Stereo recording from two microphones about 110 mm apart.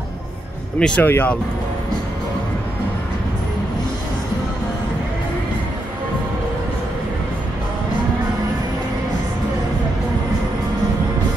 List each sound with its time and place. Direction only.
0.7 s speech: 10° left (ahead or behind)